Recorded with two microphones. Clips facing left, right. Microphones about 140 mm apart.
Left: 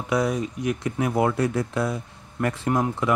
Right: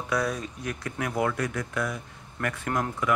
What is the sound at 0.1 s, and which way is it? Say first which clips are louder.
Speech: left 5 dB; 20° left (ahead or behind).